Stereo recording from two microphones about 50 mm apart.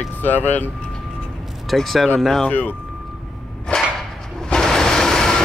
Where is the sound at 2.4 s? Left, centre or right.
Left.